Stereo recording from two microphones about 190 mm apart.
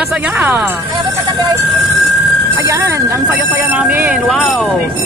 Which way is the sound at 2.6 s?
15° right (ahead or behind).